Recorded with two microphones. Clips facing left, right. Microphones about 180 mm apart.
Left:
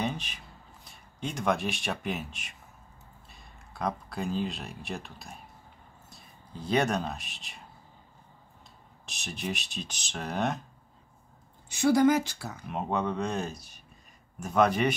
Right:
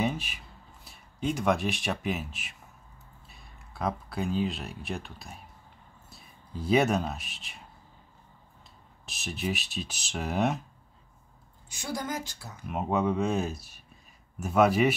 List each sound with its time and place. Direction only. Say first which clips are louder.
0.0 s a sound: right 3 dB; 5° right (ahead or behind)
0.8 s speech: right 6 dB; centre (ahead or behind)
9.0 s speech: right 3 dB; centre (ahead or behind)
11.7 s speech: left 12 dB; 75° left (ahead or behind)
12.6 s speech: right 3 dB; centre (ahead or behind)